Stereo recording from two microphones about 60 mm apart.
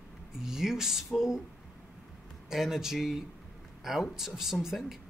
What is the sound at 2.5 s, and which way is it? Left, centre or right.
Speech, centre.